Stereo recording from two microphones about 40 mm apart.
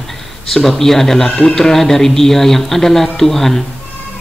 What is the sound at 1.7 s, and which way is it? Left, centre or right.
A man's voice, centre.